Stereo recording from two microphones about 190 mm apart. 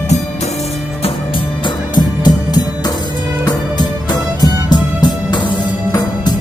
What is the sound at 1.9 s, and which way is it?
Music, 20° left (ahead or behind).